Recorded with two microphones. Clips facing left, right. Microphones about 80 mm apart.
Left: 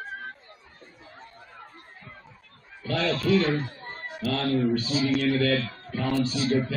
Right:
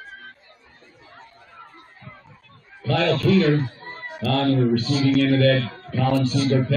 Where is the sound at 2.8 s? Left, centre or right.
Right.